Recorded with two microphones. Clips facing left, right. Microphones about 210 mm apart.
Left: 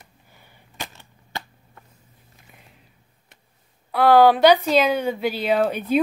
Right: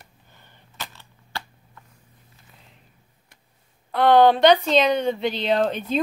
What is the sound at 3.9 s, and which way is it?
Speech, 5° left (ahead or behind).